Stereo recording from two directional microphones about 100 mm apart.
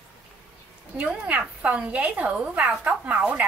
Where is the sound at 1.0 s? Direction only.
15° right (ahead or behind).